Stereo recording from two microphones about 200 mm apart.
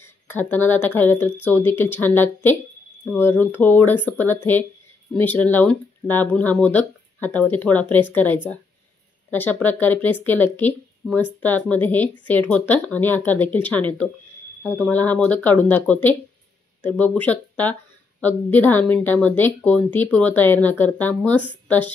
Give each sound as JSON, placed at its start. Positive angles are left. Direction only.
{"t": 0.0, "sound": "speech", "side_deg": 10}